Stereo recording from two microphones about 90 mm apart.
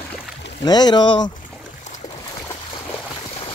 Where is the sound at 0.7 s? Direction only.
50° left (ahead or behind).